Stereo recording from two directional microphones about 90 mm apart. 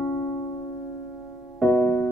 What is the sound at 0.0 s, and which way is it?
Music, 20° left (ahead or behind).